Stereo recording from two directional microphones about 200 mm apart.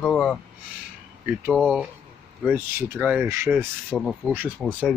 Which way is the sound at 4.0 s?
Centre (ahead or behind).